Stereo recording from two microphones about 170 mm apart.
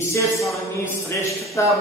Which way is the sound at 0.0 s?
15° left (ahead or behind).